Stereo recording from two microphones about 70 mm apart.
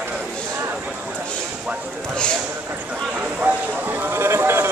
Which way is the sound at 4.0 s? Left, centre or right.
Right.